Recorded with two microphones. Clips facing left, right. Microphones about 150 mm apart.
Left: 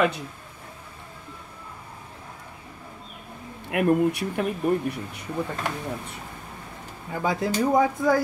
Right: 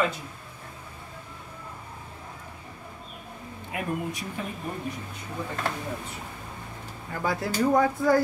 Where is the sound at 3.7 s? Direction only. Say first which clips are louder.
Left 10 dB; 65° left (ahead or behind).